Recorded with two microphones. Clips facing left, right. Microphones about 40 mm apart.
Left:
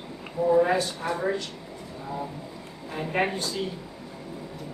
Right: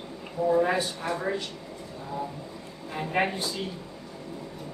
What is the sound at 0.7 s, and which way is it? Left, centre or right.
Speech, centre.